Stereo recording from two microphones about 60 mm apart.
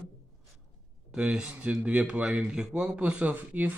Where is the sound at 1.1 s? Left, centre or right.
Centre.